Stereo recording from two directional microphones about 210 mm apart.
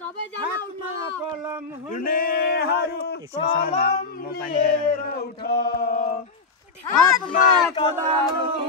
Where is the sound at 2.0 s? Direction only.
45° left (ahead or behind).